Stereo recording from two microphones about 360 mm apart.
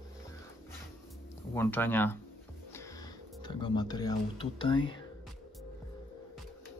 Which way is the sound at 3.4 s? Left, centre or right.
Centre.